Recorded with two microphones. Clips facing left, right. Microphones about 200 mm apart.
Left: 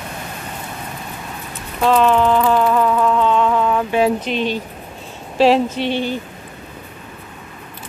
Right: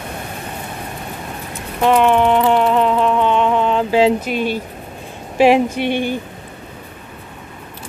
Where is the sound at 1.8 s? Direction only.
15° right (ahead or behind).